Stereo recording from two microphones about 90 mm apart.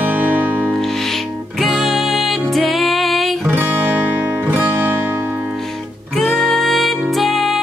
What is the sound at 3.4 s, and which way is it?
Music, 20° right (ahead or behind).